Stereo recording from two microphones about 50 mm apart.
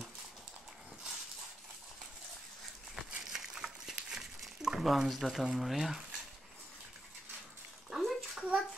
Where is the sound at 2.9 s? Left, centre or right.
Centre.